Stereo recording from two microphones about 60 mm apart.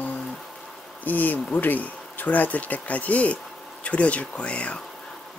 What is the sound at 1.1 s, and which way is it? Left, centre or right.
Speech, left.